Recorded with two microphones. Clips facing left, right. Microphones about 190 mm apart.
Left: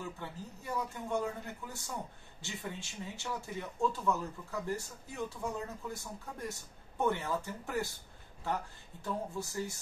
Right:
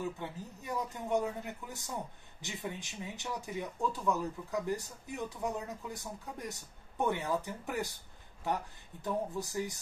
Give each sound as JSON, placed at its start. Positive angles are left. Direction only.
{"t": 0.2, "sound": "speech", "side_deg": -20}
{"t": 9.0, "sound": "speech", "side_deg": -15}